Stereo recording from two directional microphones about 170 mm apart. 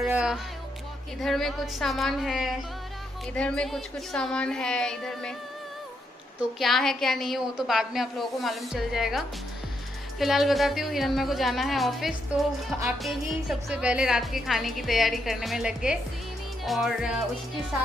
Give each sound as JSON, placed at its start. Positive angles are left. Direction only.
{"t": 0.1, "sound": "music", "side_deg": -5}
{"t": 1.2, "sound": "a woman's voice", "side_deg": 0}
{"t": 6.6, "sound": "a woman's voice", "side_deg": 0}